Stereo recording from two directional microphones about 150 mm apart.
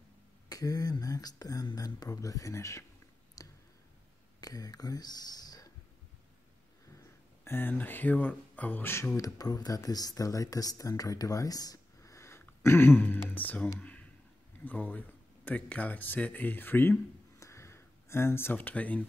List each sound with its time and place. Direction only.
0.5 s speech: 25° left (ahead or behind)
3.4 s clicking: 25° left (ahead or behind)
4.4 s speech: 25° left (ahead or behind)
7.4 s speech: 15° left (ahead or behind)
13.7 s a sound: 10° left (ahead or behind)
14.6 s speech: 10° left (ahead or behind)